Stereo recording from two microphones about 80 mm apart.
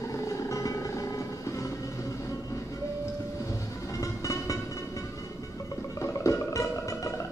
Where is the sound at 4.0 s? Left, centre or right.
Left.